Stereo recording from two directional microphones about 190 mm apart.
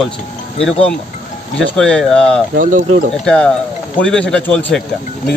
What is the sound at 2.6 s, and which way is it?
Speech, 45° right (ahead or behind).